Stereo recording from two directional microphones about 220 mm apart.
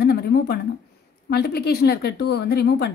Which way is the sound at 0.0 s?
45° left (ahead or behind).